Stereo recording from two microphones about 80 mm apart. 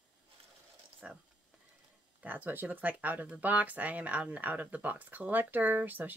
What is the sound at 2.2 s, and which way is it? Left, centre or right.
Speech, right.